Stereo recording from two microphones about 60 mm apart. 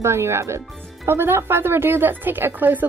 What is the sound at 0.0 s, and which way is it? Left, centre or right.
Speech, right.